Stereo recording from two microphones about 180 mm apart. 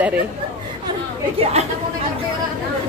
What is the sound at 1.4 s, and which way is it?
Speech, 35° right (ahead or behind).